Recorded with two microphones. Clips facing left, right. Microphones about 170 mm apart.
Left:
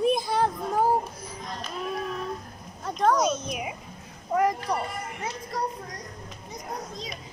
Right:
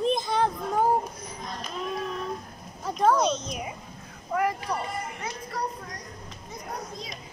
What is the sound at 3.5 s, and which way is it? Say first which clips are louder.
Speech: left 2 dB; 15° left (ahead or behind).